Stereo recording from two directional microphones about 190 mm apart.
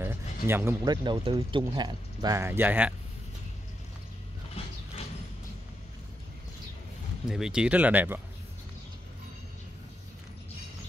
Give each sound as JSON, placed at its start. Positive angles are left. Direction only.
{"t": 0.0, "sound": "a sound", "side_deg": -10}
{"t": 1.0, "sound": "speech", "side_deg": -25}
{"t": 4.6, "sound": "mechanisms", "side_deg": 30}
{"t": 7.2, "sound": "speech", "side_deg": -5}